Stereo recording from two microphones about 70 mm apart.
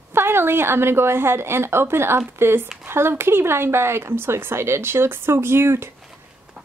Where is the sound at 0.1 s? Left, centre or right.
Right.